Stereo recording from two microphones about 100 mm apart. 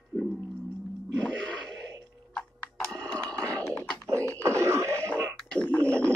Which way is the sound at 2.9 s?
10° left (ahead or behind).